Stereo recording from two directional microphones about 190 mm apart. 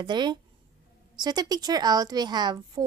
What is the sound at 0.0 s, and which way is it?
A woman's voice, 25° right (ahead or behind).